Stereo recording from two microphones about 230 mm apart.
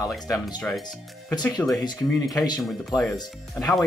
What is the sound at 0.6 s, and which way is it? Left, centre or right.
Speech, centre.